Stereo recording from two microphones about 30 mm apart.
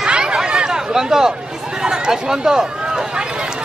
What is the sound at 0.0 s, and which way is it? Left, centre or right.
Chatter, right.